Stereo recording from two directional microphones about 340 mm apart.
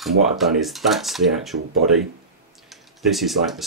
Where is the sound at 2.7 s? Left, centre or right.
Centre.